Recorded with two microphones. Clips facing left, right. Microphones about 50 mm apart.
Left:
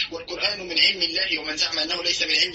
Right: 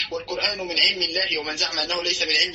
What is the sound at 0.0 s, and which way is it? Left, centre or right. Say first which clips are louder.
A man's voice: right 2 dB; right.